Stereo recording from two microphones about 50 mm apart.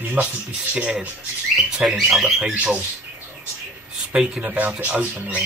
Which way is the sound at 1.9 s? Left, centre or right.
Centre.